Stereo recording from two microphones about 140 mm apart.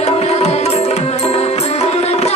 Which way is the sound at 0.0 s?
50° left (ahead or behind).